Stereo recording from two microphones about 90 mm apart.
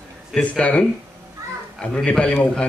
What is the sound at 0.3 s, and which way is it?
A man's voice, 10° left (ahead or behind).